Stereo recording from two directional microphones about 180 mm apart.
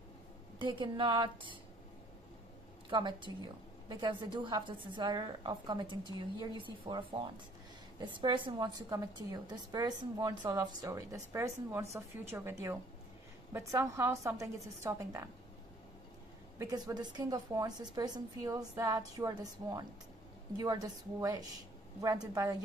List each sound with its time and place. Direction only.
0.6 s a woman's voice: 25° right (ahead or behind)
2.9 s a woman's voice: 25° right (ahead or behind)
16.5 s a woman's voice: 20° right (ahead or behind)